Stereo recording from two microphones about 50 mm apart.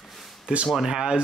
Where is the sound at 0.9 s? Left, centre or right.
Centre.